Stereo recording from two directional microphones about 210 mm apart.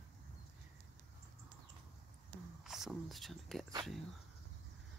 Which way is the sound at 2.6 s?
Centre (ahead or behind).